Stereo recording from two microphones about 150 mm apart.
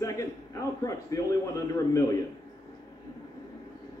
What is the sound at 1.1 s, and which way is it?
Speech, 20° left (ahead or behind).